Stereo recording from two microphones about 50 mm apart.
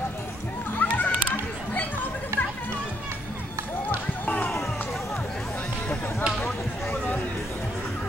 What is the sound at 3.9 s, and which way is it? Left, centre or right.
Basketball bounce, left.